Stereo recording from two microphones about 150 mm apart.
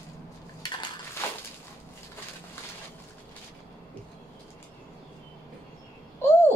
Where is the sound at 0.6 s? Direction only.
30° left (ahead or behind).